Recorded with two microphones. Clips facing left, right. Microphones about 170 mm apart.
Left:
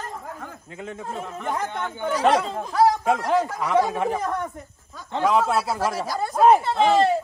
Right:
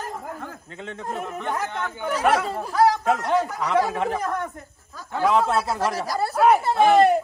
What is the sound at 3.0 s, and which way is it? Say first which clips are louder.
Speech: even; 5° left (ahead or behind).